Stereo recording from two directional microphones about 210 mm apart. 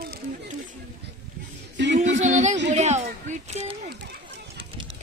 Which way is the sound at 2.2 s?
35° right (ahead or behind).